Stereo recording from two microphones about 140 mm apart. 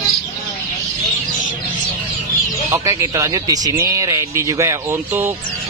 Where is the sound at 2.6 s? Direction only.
20° right (ahead or behind).